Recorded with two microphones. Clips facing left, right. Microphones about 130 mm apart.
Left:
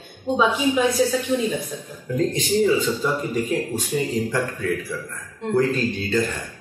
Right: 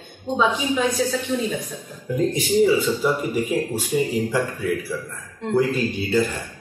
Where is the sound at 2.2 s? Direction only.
10° right (ahead or behind).